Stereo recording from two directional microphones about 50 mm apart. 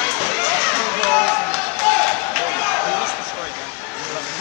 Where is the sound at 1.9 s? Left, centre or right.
Left.